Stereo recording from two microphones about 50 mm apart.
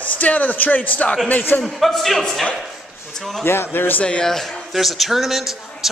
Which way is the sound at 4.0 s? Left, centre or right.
Left.